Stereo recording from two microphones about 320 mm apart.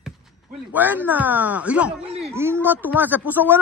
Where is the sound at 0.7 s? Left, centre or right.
Centre.